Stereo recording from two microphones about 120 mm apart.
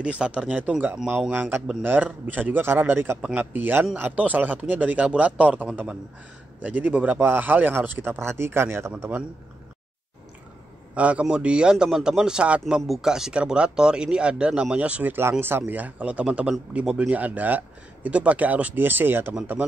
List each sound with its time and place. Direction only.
0.0 s a man's voice: 10° right (ahead or behind)
11.0 s a man's voice: 10° right (ahead or behind)